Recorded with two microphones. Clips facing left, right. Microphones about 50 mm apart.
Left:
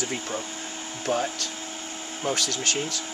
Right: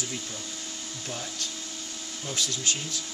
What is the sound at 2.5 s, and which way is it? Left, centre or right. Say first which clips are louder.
Speech: left 4 dB; left.